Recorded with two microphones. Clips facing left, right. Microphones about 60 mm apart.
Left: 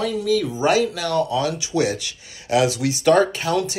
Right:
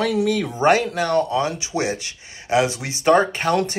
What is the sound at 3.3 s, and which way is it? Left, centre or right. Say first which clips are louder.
Speech: right 2 dB; right.